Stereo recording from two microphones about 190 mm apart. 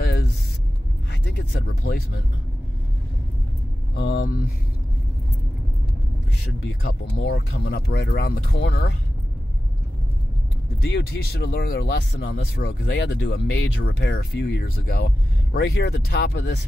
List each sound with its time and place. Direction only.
1.5 s speech: 55° left (ahead or behind)
3.9 s speech: 65° left (ahead or behind)
6.8 s speech: 60° left (ahead or behind)
8.5 s speech: 65° left (ahead or behind)
10.8 s speech: 55° left (ahead or behind)